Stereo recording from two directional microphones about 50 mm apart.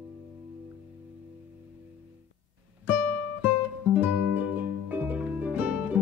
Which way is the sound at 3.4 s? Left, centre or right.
Right.